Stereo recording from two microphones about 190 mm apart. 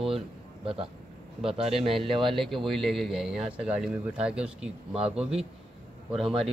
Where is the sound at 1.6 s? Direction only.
30° right (ahead or behind).